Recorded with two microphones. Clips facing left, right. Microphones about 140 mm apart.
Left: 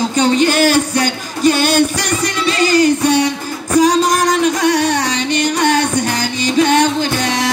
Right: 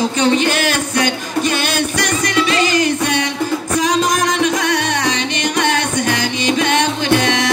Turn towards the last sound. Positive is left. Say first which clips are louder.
# right 2 dB
turn(degrees=35)  # may be behind; listen again after turning